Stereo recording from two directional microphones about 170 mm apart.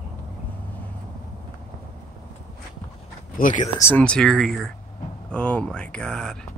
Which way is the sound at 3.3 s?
50° left (ahead or behind).